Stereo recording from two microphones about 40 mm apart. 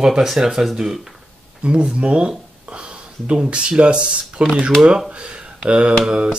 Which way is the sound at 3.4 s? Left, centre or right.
Right.